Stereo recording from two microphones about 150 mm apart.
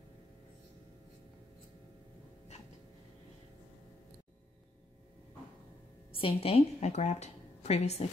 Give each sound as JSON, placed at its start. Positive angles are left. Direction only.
{"t": 6.1, "sound": "a woman's voice", "side_deg": 40}